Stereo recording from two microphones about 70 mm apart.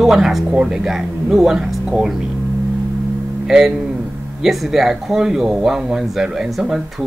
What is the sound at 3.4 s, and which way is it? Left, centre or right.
Speech, centre.